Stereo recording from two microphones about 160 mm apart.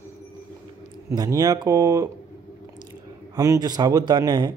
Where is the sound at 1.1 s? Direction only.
25° right (ahead or behind).